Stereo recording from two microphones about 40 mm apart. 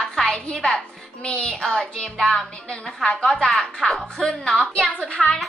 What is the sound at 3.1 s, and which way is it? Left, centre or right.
Speech, left.